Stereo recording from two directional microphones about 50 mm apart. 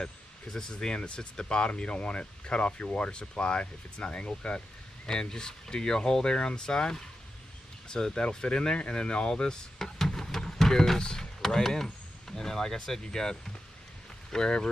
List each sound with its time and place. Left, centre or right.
0.0 s speech: centre